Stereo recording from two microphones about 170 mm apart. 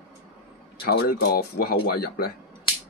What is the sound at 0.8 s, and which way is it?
Speech, 65° left (ahead or behind).